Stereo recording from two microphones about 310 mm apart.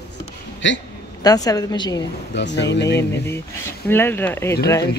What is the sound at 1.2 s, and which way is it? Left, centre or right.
Speech, centre.